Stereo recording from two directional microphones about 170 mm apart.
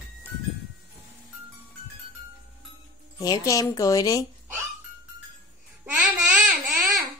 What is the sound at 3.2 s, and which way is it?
A woman's voice, 20° left (ahead or behind).